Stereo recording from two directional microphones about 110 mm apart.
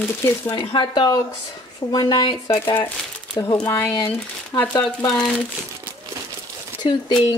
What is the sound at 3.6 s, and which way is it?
Speech, 20° left (ahead or behind).